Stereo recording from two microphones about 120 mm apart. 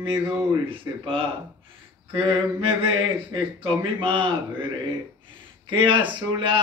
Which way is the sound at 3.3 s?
45° right (ahead or behind).